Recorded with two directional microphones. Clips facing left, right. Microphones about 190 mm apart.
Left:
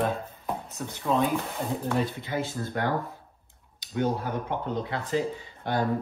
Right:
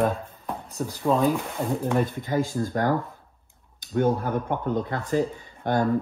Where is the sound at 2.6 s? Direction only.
40° right (ahead or behind).